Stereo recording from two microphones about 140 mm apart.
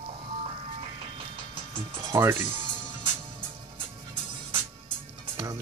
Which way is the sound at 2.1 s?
20° right (ahead or behind).